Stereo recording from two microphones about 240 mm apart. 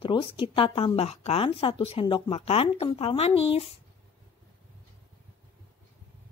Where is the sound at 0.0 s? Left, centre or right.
Left.